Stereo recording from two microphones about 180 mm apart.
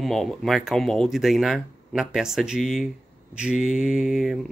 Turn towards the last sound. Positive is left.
turn(degrees=0)  # may be behind; listen again after turning